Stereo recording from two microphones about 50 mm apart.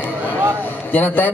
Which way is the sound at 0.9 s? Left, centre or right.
Left.